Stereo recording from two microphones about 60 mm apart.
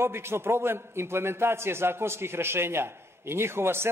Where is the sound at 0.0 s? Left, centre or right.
Right.